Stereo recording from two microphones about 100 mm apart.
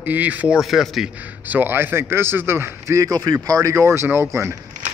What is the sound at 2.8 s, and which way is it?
Speech, 35° right (ahead or behind).